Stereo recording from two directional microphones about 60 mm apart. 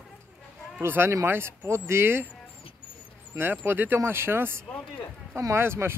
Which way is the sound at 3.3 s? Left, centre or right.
Right.